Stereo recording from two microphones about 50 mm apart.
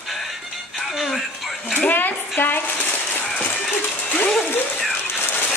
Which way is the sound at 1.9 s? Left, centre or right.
Left.